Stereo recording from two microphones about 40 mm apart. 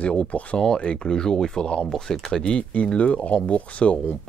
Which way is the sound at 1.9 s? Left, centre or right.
Centre.